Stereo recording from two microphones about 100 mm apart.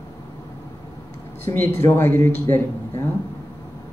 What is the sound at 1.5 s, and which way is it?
Speech, 30° left (ahead or behind).